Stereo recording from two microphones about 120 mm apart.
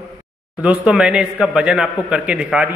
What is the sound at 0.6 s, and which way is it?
A man's voice, 10° right (ahead or behind).